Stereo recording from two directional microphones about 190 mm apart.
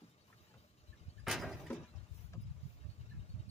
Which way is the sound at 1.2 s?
Centre (ahead or behind).